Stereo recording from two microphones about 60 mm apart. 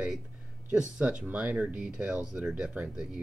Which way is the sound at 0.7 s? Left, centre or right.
Centre.